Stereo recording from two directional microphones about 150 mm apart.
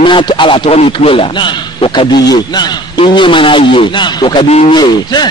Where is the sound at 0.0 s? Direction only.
30° left (ahead or behind).